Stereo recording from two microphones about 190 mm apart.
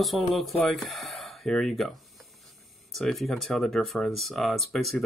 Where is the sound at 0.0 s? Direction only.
Centre (ahead or behind).